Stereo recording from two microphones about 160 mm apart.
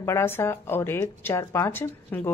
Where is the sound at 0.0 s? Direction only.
15° left (ahead or behind).